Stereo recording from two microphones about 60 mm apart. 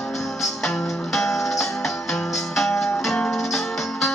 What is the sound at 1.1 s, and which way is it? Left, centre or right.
Music, centre.